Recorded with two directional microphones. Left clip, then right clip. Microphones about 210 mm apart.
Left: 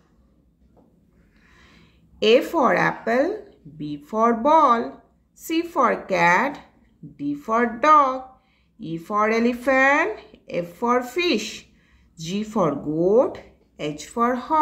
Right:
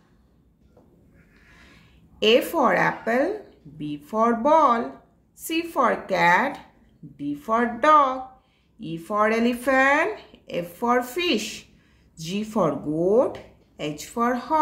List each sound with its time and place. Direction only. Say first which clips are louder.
2.1 s speech: left 2 dB; 15° left (ahead or behind)